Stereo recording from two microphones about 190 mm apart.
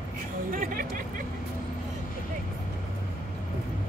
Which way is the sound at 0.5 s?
45° right (ahead or behind).